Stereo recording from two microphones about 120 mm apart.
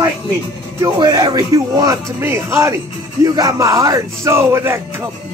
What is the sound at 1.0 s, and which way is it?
Speech, 35° right (ahead or behind).